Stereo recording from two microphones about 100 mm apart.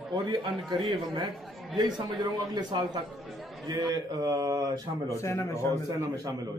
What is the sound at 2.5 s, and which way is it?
A man's voice, 40° right (ahead or behind).